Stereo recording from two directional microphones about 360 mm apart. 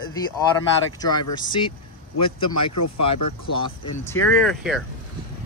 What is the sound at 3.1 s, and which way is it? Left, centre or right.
Speech, centre.